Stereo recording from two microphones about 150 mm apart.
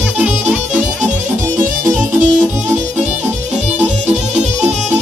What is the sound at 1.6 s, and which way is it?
Music, 60° right (ahead or behind).